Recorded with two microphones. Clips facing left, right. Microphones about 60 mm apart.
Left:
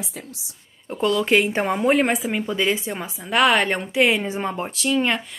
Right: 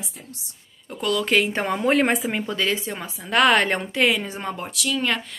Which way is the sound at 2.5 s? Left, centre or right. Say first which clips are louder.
Left 2 dB; centre.